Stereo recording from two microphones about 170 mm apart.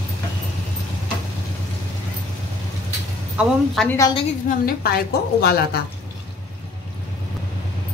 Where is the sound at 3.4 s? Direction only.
5° right (ahead or behind).